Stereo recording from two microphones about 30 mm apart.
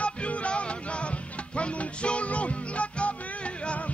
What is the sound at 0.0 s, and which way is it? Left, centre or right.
Music, left.